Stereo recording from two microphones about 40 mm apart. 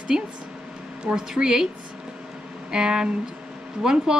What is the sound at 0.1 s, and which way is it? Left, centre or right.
Speech, centre.